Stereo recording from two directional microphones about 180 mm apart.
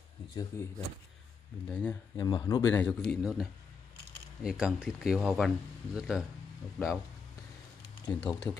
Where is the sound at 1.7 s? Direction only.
10° left (ahead or behind).